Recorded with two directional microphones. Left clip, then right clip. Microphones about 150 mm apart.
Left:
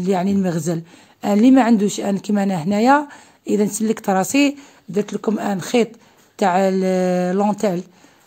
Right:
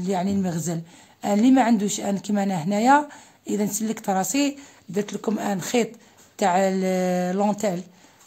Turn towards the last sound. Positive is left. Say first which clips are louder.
# left 4 dB
turn(degrees=30)  # may be behind; listen again after turning